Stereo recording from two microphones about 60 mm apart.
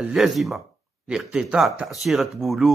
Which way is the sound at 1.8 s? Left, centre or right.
Centre.